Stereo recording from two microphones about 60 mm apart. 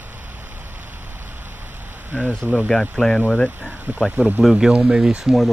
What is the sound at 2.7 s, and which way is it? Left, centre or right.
Speech, centre.